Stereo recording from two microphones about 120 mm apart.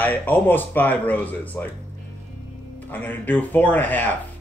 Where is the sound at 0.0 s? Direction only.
15° left (ahead or behind).